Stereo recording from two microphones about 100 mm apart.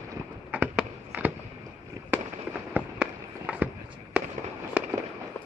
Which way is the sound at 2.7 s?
15° right (ahead or behind).